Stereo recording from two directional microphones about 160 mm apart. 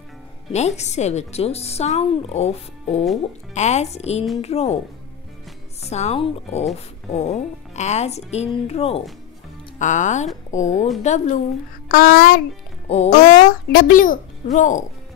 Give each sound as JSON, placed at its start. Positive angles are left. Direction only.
{"t": 0.5, "sound": "speech", "side_deg": 45}
{"t": 5.9, "sound": "speech", "side_deg": 45}
{"t": 9.8, "sound": "speech", "side_deg": 50}
{"t": 11.9, "sound": "speech", "side_deg": 65}
{"t": 12.8, "sound": "speech", "side_deg": 40}
{"t": 13.1, "sound": "speech", "side_deg": 60}